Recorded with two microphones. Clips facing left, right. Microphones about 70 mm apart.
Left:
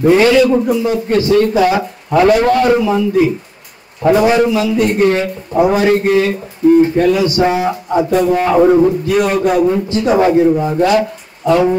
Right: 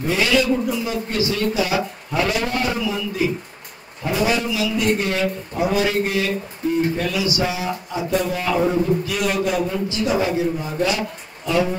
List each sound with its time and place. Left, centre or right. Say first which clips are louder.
0.0 s speech: left 10 dB; left